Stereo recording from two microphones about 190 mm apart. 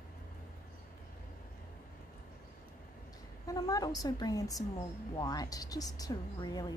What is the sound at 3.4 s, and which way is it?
A woman's voice, 20° left (ahead or behind).